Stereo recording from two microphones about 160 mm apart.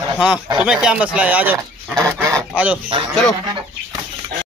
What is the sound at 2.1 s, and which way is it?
Goose, 20° right (ahead or behind).